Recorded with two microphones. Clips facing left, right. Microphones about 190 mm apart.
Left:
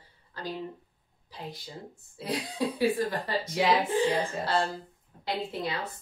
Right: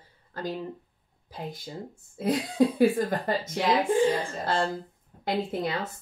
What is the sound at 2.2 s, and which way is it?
A woman's voice, 50° right (ahead or behind).